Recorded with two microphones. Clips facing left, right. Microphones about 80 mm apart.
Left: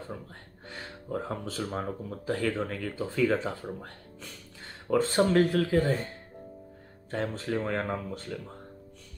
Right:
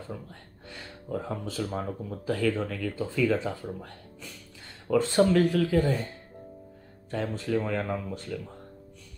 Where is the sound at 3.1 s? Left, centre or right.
Left.